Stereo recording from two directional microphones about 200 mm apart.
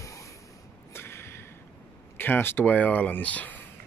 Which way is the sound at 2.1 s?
10° left (ahead or behind).